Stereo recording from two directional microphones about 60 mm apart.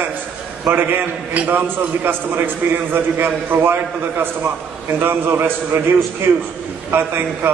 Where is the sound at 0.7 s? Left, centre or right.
Right.